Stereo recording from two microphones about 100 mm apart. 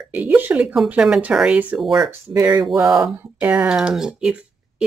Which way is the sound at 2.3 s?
30° right (ahead or behind).